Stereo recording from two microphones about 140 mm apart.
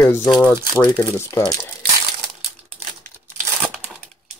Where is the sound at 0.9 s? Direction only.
40° left (ahead or behind).